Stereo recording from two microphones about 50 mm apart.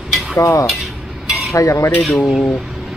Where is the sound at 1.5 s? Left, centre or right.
Left.